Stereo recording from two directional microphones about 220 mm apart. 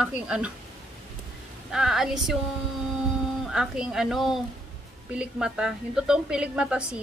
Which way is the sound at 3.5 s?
5° right (ahead or behind).